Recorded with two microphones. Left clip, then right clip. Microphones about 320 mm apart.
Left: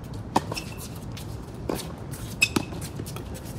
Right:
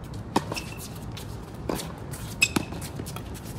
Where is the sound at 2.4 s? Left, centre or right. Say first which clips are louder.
Even; centre.